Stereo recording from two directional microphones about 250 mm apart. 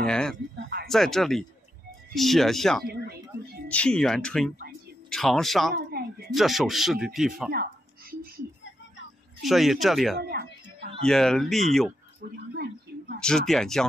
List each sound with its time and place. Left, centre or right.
0.0 s a sound: centre
0.8 s speech: centre
2.8 s speech: right
3.6 s speech: centre
5.8 s a sound: right
6.3 s speech: centre
9.4 s speech: centre
10.1 s a sound: right
11.0 s speech: centre
13.2 s speech: centre